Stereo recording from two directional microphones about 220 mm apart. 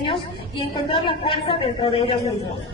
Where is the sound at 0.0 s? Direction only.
25° left (ahead or behind).